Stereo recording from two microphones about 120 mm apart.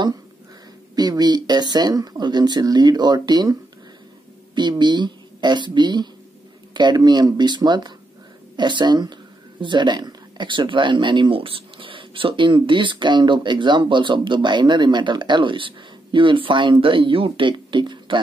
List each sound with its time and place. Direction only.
0.9 s speech: 35° right (ahead or behind)
4.6 s speech: 40° right (ahead or behind)